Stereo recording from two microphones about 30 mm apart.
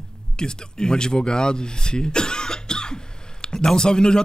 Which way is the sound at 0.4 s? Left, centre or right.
Left.